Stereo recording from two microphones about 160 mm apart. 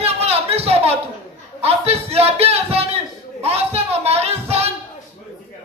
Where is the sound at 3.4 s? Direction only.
40° right (ahead or behind).